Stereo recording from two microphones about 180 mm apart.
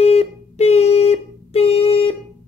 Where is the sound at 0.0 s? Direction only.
35° left (ahead or behind).